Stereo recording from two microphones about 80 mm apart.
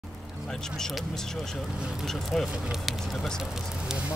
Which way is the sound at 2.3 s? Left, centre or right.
Centre.